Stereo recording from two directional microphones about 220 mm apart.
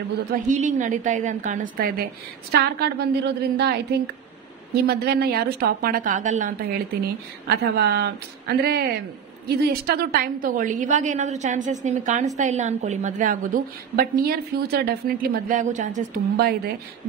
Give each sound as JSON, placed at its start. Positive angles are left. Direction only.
{"t": 0.3, "sound": "a woman's voice", "side_deg": -35}
{"t": 4.8, "sound": "a woman's voice", "side_deg": -45}